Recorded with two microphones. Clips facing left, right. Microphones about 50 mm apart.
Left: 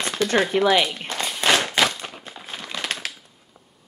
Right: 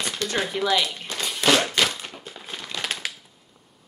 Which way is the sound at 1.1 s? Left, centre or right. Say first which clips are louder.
Right 3 dB; centre.